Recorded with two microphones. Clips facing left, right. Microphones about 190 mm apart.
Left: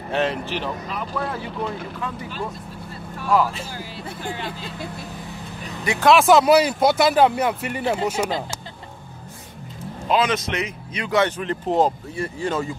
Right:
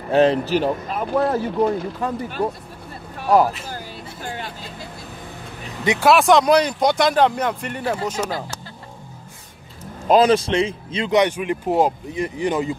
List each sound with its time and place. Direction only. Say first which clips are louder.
0.1 s speech: right 8 dB; 35° right (ahead or behind)
6.0 s speech: even; centre (ahead or behind); by 8.5 s 20° left (ahead or behind)
10.0 s speech: right 6 dB; 40° right (ahead or behind); by 12.7 s 15° right (ahead or behind)